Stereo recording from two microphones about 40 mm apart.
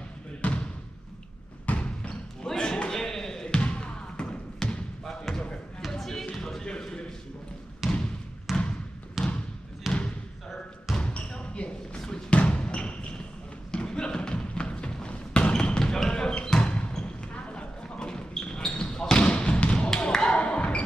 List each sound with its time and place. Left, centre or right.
0.4 s basketball bounce: left
1.7 s basketball bounce: left
2.4 s a sound: centre
3.4 s basketball bounce: left
5.0 s basketball bounce: centre
5.8 s a sound: centre
7.8 s trickle: centre
8.5 s basketball bounce: centre
11.0 s basketball bounce: left
13.7 s thump: left
15.8 s basketball bounce: centre
18.9 s trickle: centre
19.9 s a sound: centre